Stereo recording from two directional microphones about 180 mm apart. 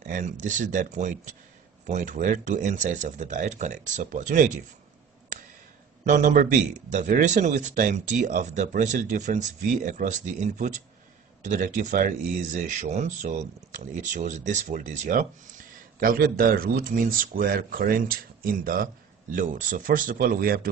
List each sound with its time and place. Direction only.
0.0 s speech: 45° right (ahead or behind)
6.0 s speech: 45° right (ahead or behind)